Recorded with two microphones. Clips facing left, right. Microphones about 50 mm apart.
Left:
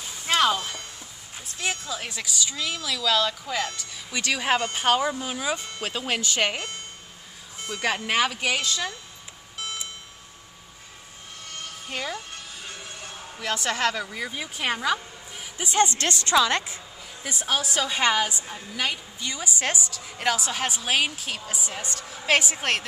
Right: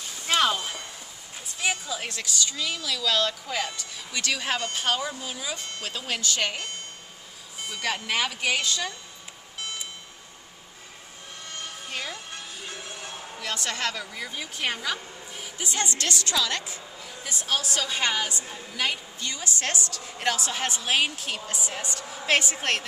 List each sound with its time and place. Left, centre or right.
0.3 s a woman's voice: centre
2.0 s a woman's voice: centre
4.1 s a woman's voice: centre
7.8 s a woman's voice: centre
9.6 s alarm clock: centre
11.9 s speech: centre
13.4 s speech: centre
15.5 s a woman's voice: left
17.2 s a woman's voice: centre